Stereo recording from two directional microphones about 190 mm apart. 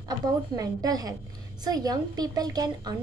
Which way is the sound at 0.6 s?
20° right (ahead or behind).